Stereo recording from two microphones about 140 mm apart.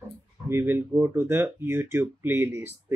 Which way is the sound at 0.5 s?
15° right (ahead or behind).